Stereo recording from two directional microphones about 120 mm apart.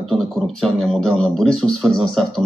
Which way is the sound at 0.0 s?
5° left (ahead or behind).